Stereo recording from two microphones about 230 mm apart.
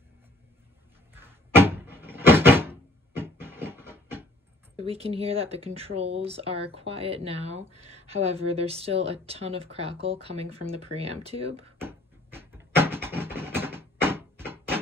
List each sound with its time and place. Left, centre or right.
1.1 s door: centre
4.7 s speech: right
11.8 s a sound: centre